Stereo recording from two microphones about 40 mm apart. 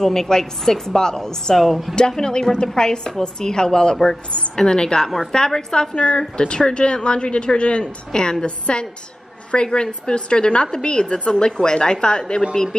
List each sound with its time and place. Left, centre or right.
0.0 s a woman's voice: centre
2.0 s a woman's voice: centre